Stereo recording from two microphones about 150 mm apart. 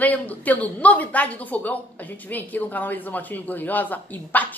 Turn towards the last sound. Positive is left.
turn(degrees=10)  # may be behind; listen again after turning